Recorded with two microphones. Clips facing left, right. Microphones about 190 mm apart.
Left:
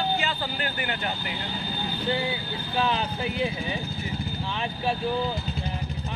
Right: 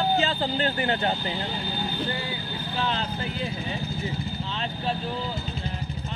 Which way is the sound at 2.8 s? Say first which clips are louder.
Left 1 dB; 15° left (ahead or behind).